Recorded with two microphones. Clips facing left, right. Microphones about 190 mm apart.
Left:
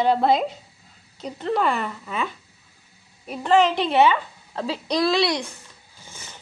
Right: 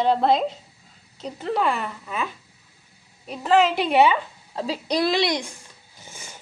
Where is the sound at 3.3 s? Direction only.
Centre (ahead or behind).